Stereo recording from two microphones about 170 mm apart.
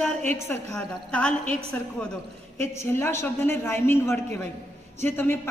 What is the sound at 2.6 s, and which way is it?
A woman's voice, 15° left (ahead or behind).